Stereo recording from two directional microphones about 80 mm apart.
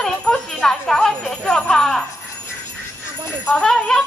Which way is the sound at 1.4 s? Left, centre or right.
Centre.